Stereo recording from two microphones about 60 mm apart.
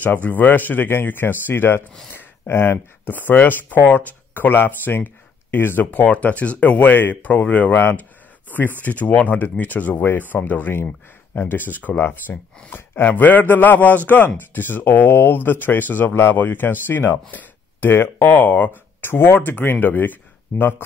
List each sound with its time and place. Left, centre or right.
0.0 s speech: left
10.3 s speech: left